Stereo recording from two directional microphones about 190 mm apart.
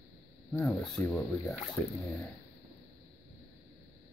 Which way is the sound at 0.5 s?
5° left (ahead or behind).